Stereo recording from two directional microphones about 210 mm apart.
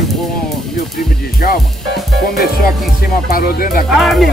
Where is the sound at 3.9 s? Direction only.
Centre (ahead or behind).